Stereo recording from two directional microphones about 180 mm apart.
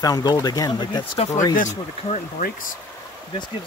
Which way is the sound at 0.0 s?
20° left (ahead or behind).